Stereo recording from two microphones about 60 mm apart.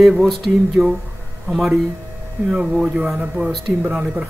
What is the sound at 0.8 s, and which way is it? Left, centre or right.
Speech, right.